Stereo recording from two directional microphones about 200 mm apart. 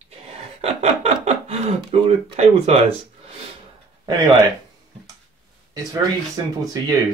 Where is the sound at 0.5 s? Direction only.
35° right (ahead or behind).